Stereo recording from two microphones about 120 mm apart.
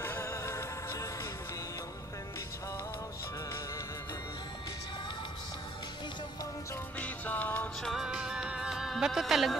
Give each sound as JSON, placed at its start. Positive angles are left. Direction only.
{"t": 0.0, "sound": "music", "side_deg": 20}
{"t": 7.0, "sound": "music", "side_deg": 15}
{"t": 7.8, "sound": "music", "side_deg": -5}